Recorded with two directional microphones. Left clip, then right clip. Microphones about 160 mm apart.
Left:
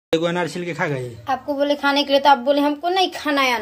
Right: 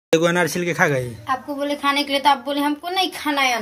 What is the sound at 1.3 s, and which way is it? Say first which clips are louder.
A woman's voice: left 3 dB; 90° left.